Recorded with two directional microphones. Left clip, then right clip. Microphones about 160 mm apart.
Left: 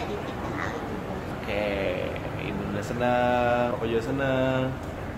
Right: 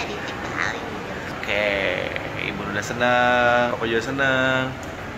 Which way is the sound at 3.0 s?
5° right (ahead or behind).